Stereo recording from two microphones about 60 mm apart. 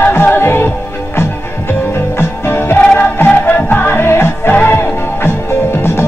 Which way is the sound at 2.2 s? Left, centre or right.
Left.